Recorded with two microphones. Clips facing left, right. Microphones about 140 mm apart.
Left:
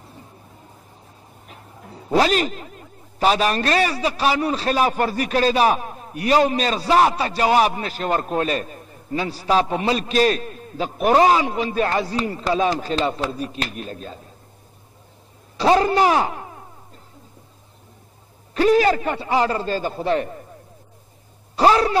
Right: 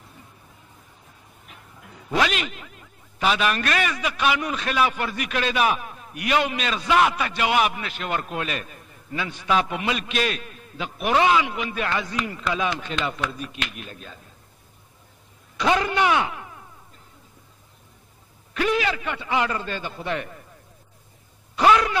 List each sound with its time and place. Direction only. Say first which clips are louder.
1.5 s speech: left 6 dB; 35° left (ahead or behind)
15.5 s speech: left 5 dB; 35° left (ahead or behind)
18.5 s speech: left 8 dB; 35° left (ahead or behind)
21.5 s speech: left 2 dB; 35° left (ahead or behind)